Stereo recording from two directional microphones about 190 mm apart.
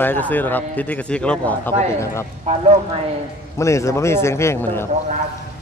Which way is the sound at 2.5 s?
35° right (ahead or behind).